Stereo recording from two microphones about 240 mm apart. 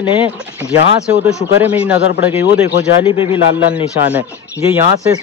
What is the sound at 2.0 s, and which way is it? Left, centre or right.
Speech, left.